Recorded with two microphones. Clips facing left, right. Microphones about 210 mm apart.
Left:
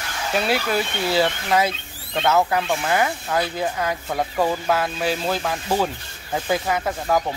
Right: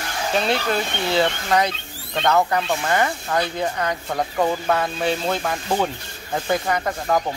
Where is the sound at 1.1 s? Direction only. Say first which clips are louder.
Even; 5° left (ahead or behind).